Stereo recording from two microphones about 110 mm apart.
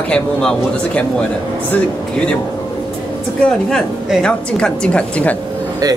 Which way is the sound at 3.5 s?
5° left (ahead or behind).